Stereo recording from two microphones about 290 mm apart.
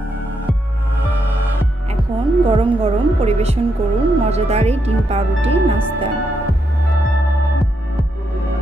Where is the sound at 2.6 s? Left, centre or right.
Centre.